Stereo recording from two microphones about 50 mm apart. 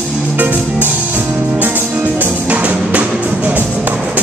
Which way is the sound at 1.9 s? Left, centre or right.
Right.